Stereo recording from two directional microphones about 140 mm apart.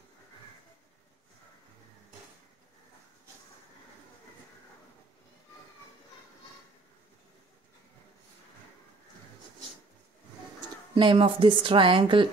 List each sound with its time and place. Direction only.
11.0 s a woman's voice: 35° right (ahead or behind)